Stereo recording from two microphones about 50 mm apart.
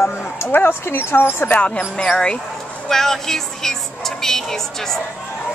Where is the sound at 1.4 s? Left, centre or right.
Left.